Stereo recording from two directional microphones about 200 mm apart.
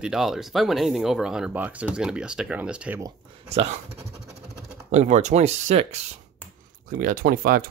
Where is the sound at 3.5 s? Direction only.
30° right (ahead or behind).